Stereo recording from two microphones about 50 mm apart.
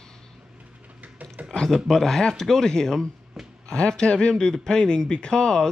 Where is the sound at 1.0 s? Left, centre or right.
Right.